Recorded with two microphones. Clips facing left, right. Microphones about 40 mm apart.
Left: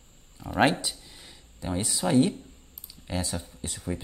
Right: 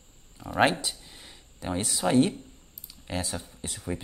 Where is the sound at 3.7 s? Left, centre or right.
Centre.